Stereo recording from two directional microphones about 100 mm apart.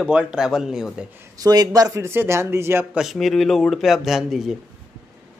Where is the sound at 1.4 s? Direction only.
40° right (ahead or behind).